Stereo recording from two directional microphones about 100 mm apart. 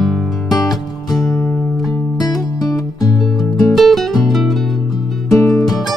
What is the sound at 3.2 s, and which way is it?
Music, centre (ahead or behind).